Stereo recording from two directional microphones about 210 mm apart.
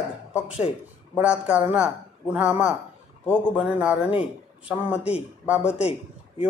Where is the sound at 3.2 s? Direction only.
5° right (ahead or behind).